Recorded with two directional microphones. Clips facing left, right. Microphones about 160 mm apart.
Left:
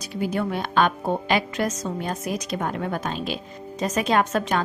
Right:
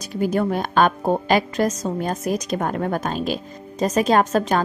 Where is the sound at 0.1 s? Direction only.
45° right (ahead or behind).